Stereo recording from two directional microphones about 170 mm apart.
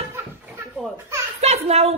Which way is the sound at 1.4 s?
40° right (ahead or behind).